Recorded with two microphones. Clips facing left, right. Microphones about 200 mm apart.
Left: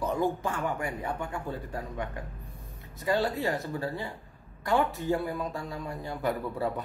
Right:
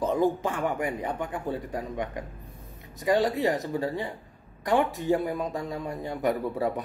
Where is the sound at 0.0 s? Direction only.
20° right (ahead or behind).